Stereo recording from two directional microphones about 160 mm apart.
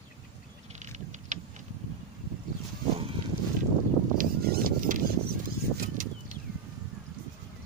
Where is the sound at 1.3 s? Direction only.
50° right (ahead or behind).